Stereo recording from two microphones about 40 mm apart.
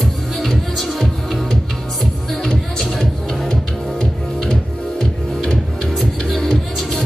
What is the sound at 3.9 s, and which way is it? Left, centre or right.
Music, centre.